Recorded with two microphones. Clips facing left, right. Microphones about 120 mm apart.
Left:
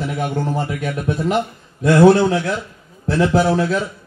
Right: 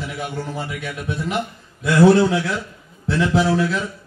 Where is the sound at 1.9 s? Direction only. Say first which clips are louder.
Left 2 dB; 25° left (ahead or behind).